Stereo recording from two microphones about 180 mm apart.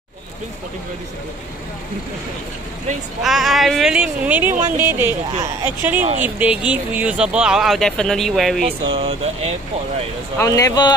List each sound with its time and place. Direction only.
3.2 s speech: centre (ahead or behind)
8.6 s speech: 30° right (ahead or behind)
10.4 s speech: 20° left (ahead or behind)